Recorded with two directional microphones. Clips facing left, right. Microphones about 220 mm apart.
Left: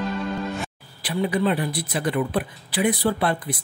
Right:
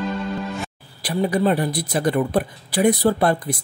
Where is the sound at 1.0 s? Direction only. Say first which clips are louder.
Right 3 dB; 40° right (ahead or behind).